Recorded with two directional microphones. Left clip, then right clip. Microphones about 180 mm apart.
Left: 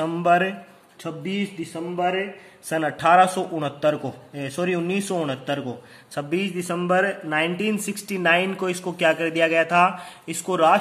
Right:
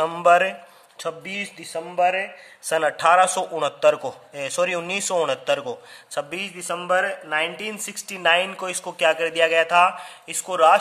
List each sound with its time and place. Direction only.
0.0 s a man's voice: 35° right (ahead or behind)
1.0 s a sound: 45° right (ahead or behind)
2.7 s a man's voice: 35° right (ahead or behind)
6.1 s speech: 20° right (ahead or behind)